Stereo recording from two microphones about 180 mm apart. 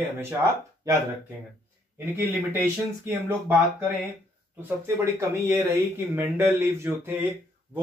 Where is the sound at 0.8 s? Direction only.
20° right (ahead or behind).